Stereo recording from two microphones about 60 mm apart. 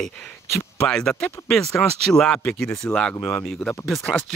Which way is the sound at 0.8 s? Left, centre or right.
Centre.